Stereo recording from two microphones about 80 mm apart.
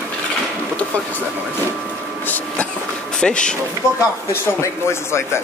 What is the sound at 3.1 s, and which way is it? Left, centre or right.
Speech, centre.